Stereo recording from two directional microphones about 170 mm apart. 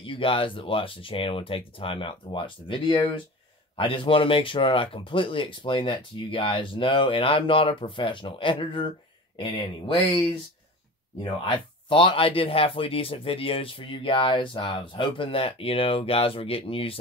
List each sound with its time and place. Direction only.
0.0 s speech: 30° left (ahead or behind)
11.4 s speech: 30° left (ahead or behind)